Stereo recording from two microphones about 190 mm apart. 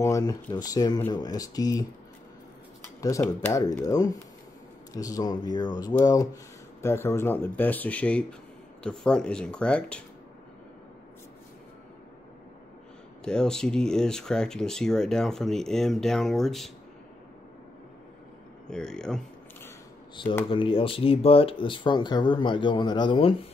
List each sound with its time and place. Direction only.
0.0 s speech: 20° left (ahead or behind)
3.0 s speech: 15° left (ahead or behind)
13.2 s speech: 5° left (ahead or behind)
18.7 s speech: 5° left (ahead or behind)
20.4 s speech: 25° left (ahead or behind)